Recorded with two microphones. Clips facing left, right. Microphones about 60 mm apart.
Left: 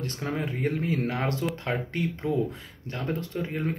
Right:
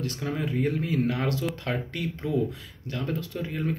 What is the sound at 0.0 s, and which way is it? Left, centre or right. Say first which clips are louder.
A man's voice: right 1 dB; left.